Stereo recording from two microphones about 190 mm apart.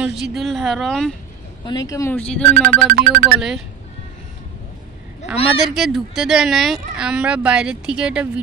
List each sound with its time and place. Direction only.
0.0 s speech: centre (ahead or behind)
1.7 s speech: 20° left (ahead or behind)
2.9 s speech: 45° right (ahead or behind)
3.3 s speech: 5° right (ahead or behind)
5.3 s speech: centre (ahead or behind)